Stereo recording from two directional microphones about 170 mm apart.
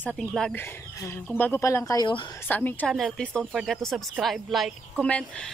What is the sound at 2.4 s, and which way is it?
A woman's voice, 10° left (ahead or behind).